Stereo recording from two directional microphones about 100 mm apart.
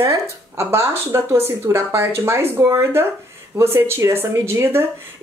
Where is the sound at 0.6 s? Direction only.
25° right (ahead or behind).